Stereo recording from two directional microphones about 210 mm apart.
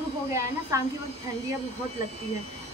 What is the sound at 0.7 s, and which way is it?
Speech, 15° right (ahead or behind).